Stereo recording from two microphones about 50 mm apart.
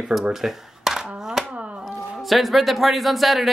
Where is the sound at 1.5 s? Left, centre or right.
Right.